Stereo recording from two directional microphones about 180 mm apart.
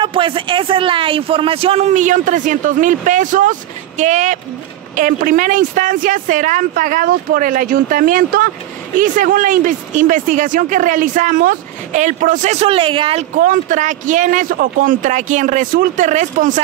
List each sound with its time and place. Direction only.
0.0 s a man's voice: 30° right (ahead or behind)
13.4 s speech: 45° right (ahead or behind)